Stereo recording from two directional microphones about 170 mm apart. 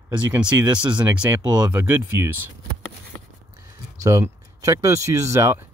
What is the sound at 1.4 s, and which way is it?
Speech, 20° right (ahead or behind).